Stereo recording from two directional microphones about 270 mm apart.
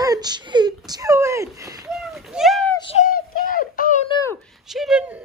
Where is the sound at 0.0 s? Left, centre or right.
Centre.